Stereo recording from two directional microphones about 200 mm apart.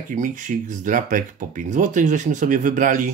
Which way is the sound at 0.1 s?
40° right (ahead or behind).